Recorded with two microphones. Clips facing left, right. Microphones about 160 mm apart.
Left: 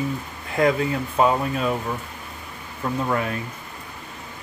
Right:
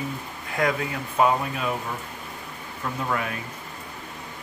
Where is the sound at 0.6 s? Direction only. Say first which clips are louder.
Left 5 dB; 25° left (ahead or behind).